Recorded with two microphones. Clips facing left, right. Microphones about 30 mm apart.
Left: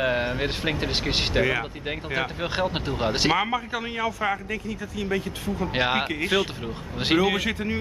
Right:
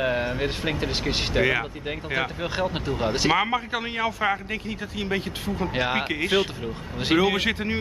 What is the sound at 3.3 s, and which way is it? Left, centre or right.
A man's voice, centre.